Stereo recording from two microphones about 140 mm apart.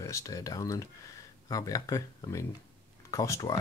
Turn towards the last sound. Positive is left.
turn(degrees=20)  # may be behind; listen again after turning